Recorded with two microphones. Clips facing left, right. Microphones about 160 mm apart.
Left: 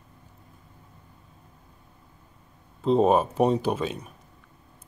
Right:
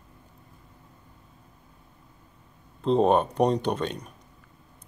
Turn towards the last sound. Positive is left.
turn(degrees=5)  # may be behind; listen again after turning